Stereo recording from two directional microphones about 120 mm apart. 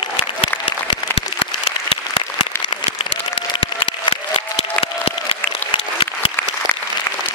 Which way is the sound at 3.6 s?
50° left (ahead or behind).